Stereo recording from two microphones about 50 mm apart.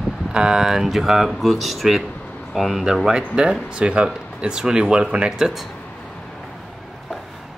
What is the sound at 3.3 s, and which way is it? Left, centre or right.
Speech, centre.